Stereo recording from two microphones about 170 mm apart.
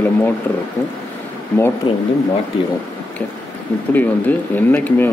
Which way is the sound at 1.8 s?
30° left (ahead or behind).